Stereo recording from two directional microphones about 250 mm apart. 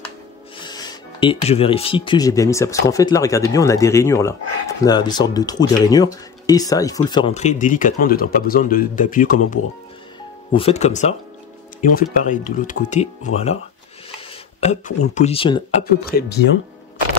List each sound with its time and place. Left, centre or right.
0.7 s speech: centre
12.2 s speech: left
14.6 s speech: left
15.8 s speech: left